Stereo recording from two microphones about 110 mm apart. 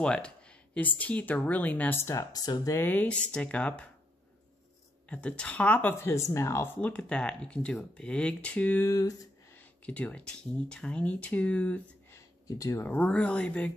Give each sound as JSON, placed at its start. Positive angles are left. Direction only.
{"t": 0.0, "sound": "speech", "side_deg": 10}
{"t": 2.8, "sound": "speech", "side_deg": 15}
{"t": 5.1, "sound": "speech", "side_deg": 10}
{"t": 6.8, "sound": "speech", "side_deg": 10}
{"t": 8.8, "sound": "speech", "side_deg": 30}
{"t": 9.6, "sound": "speech", "side_deg": 15}
{"t": 12.4, "sound": "speech", "side_deg": 30}
{"t": 12.8, "sound": "speech", "side_deg": 15}